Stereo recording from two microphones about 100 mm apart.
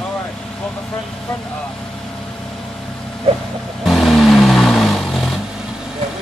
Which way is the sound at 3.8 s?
Centre (ahead or behind).